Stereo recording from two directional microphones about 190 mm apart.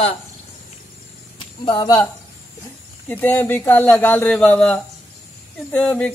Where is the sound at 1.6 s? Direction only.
20° left (ahead or behind).